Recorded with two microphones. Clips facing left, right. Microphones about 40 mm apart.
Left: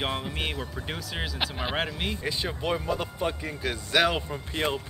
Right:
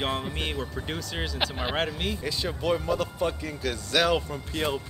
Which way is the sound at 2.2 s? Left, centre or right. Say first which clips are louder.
Right 2 dB; left.